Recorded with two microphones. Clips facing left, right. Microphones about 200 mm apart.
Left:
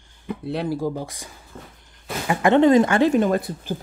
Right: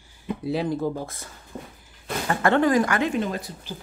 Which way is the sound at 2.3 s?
15° left (ahead or behind).